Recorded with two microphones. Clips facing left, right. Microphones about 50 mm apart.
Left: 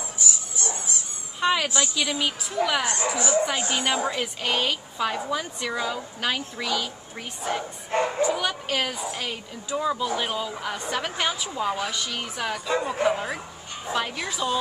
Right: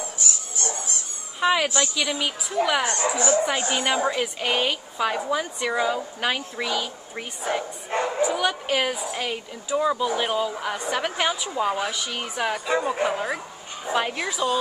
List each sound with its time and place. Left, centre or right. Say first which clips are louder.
0.2 s dog: left 2 dB; right
1.4 s a woman's voice: right 2 dB; centre